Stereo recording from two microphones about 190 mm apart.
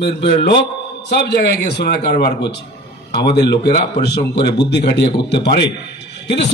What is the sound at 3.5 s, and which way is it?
A man's voice, 60° left (ahead or behind).